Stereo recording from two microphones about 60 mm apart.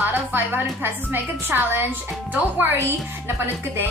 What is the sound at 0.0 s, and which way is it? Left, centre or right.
Music, right.